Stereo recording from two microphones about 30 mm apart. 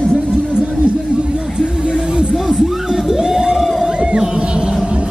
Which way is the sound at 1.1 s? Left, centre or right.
Right.